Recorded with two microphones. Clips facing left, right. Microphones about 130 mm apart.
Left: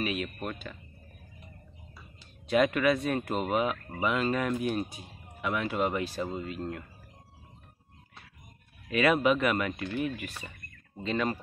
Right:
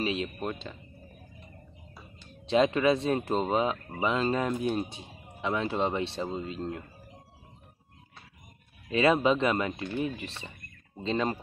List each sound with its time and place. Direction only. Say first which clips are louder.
0.0 s speech: right 2 dB; 25° right (ahead or behind)
2.4 s speech: right 1 dB; 25° right (ahead or behind)
8.9 s speech: right 1 dB; 30° right (ahead or behind)